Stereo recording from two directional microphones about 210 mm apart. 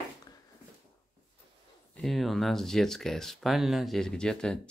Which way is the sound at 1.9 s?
Centre (ahead or behind).